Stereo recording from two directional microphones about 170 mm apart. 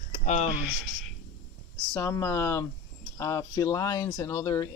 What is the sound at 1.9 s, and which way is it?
Speech, 15° left (ahead or behind).